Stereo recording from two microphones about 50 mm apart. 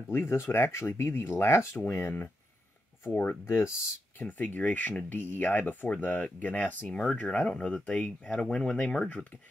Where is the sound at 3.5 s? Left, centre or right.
Left.